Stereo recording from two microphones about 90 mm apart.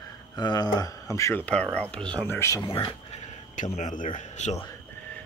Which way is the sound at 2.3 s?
30° left (ahead or behind).